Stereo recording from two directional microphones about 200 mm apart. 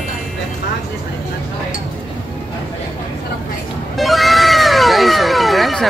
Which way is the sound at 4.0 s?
Centre (ahead or behind).